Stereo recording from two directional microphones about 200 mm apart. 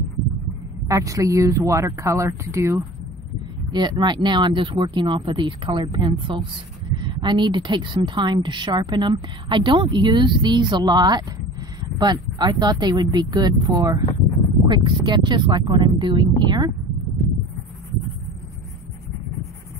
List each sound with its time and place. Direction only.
0.8 s a woman's voice: 15° right (ahead or behind)